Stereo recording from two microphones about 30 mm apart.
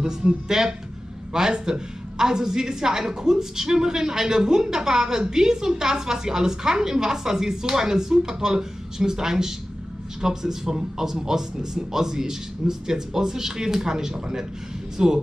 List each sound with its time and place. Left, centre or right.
0.0 s a woman's voice: right